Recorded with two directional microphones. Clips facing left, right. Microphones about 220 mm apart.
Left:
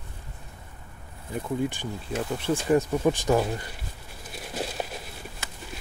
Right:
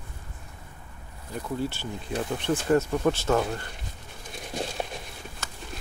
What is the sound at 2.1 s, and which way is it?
Speech, 5° left (ahead or behind).